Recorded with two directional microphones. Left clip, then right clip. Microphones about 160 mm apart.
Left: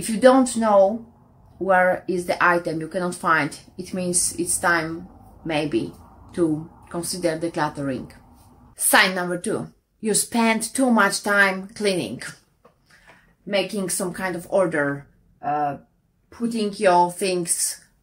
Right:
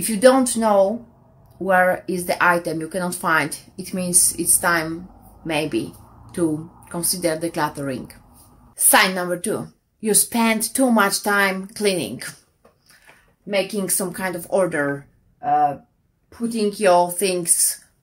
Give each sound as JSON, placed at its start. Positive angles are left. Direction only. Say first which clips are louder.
{"t": 0.0, "sound": "a woman's voice", "louder": "right 1 dB", "side_deg": -20}
{"t": 13.5, "sound": "speech", "louder": "right 1 dB", "side_deg": -15}
{"t": 16.6, "sound": "speech", "louder": "right 1 dB", "side_deg": -20}